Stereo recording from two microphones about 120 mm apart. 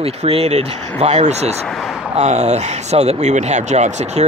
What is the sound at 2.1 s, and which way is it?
Speech, 70° right (ahead or behind).